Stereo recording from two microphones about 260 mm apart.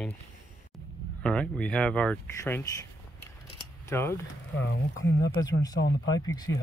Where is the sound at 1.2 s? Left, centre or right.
Centre.